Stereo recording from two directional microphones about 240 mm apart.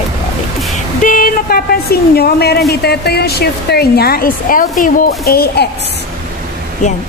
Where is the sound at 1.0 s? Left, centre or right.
Left.